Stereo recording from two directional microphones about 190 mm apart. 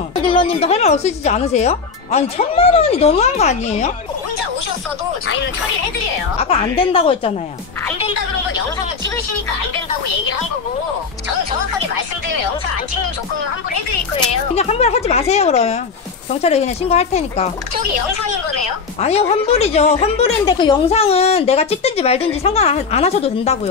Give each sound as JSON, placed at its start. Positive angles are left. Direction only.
{"t": 0.3, "sound": "a woman's voice", "side_deg": 30}
{"t": 6.4, "sound": "a woman's voice", "side_deg": 30}
{"t": 14.5, "sound": "a woman's voice", "side_deg": 35}
{"t": 18.9, "sound": "a woman's voice", "side_deg": 35}